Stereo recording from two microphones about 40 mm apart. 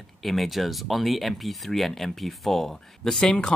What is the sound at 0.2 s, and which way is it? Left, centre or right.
Speech, centre.